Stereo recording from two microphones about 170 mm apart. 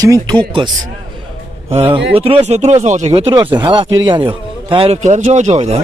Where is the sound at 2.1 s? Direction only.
35° right (ahead or behind).